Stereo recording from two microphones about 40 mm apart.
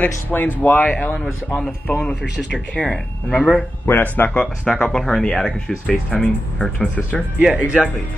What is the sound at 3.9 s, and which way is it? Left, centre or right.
Speech, left.